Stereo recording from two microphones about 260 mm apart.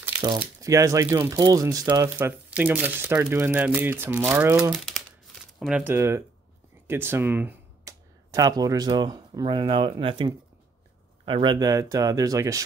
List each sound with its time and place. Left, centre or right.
0.0 s speech: centre